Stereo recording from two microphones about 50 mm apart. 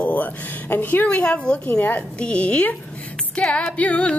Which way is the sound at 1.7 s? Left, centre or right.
Left.